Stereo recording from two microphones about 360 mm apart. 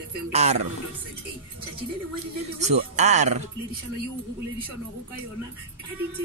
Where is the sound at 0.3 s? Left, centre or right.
Centre.